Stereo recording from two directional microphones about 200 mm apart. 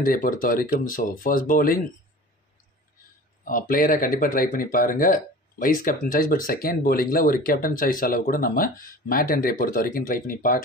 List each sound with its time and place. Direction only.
0.0 s speech: 45° left (ahead or behind)
3.4 s speech: 45° left (ahead or behind)